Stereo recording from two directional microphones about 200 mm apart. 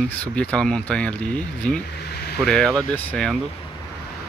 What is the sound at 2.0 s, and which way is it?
Vehicle, 55° left (ahead or behind).